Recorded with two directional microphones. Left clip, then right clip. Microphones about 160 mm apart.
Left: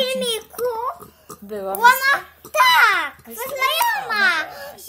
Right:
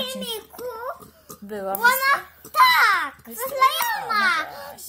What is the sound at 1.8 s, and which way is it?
Speech, 35° left (ahead or behind).